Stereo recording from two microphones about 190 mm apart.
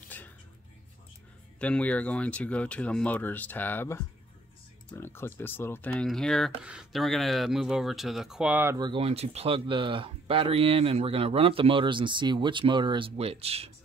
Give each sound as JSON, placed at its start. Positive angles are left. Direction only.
{"t": 0.1, "sound": "music", "side_deg": 10}
{"t": 1.6, "sound": "speech", "side_deg": 5}
{"t": 8.7, "sound": "speech", "side_deg": -25}